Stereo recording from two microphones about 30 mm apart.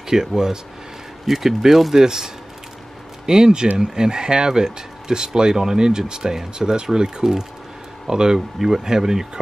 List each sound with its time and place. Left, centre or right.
0.1 s speech: right
1.2 s speech: centre